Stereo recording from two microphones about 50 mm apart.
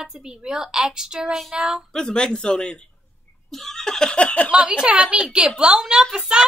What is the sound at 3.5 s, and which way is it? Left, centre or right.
Laughter, centre.